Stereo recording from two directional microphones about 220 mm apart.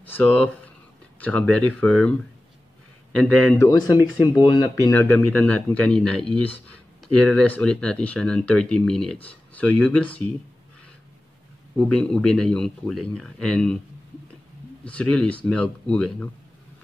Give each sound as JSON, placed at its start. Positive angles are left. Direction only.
{"t": 0.0, "sound": "a sound", "side_deg": 5}
{"t": 1.2, "sound": "speech", "side_deg": 5}
{"t": 11.9, "sound": "speech", "side_deg": 5}
{"t": 14.9, "sound": "speech", "side_deg": 5}